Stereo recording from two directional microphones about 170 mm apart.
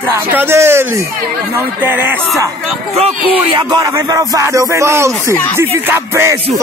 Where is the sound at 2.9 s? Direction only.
35° right (ahead or behind); by 6.3 s 15° right (ahead or behind).